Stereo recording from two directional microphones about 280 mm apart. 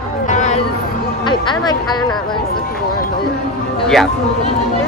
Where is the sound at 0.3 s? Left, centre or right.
Left.